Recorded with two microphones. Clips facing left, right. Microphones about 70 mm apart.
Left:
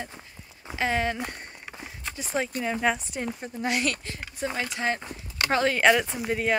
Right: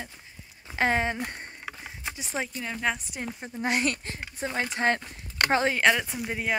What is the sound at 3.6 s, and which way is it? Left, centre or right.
Speech, right.